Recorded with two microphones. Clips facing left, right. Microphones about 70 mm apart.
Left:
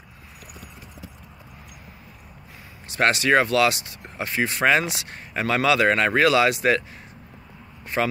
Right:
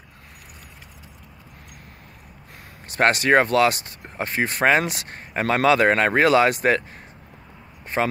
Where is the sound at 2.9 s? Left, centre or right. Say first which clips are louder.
Right 2 dB; right.